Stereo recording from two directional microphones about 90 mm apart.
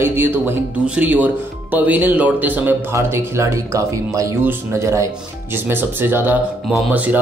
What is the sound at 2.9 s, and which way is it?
Speech, 30° right (ahead or behind).